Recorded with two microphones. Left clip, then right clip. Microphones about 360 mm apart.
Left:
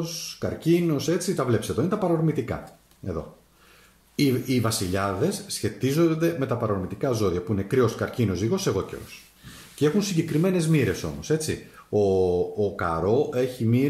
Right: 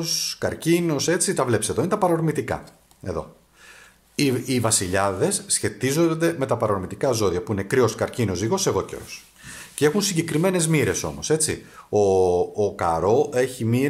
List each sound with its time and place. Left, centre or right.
0.0 s speech: centre
4.2 s speech: centre